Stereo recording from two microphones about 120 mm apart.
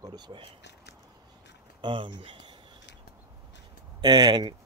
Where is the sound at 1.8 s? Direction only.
45° right (ahead or behind).